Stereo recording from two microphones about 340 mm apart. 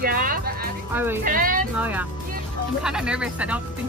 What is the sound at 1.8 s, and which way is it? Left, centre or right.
Speech, centre.